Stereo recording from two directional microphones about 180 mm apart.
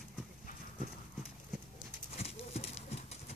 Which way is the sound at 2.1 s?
35° left (ahead or behind).